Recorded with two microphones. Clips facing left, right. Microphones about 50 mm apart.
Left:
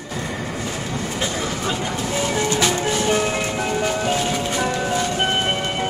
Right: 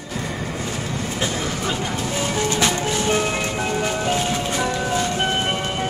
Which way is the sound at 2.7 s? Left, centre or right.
Left.